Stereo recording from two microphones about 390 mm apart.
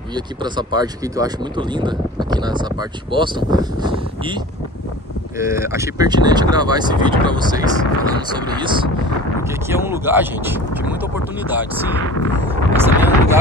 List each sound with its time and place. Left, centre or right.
0.1 s speech: centre
5.4 s speech: centre
12.8 s vehicle: centre